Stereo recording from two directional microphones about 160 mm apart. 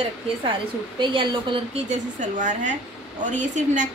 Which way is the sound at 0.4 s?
30° right (ahead or behind).